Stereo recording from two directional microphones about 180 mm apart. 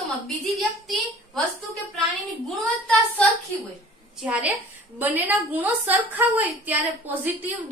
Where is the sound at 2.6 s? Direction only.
5° left (ahead or behind).